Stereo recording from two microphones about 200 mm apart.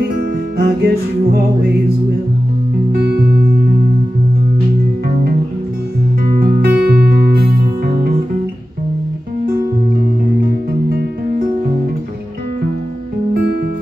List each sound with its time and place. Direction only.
0.6 s music: 50° right (ahead or behind)
2.9 s music: 55° right (ahead or behind)
6.4 s music: 50° right (ahead or behind)